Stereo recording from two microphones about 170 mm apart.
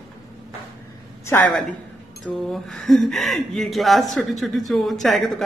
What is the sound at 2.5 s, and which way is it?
A woman's voice, centre (ahead or behind).